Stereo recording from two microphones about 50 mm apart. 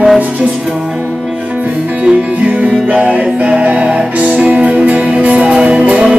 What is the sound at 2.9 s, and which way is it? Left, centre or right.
Music, centre.